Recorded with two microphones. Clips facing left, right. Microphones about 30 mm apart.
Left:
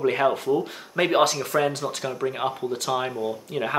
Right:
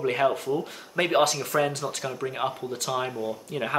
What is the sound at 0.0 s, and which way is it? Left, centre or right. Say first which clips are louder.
Speech: left 2 dB; centre.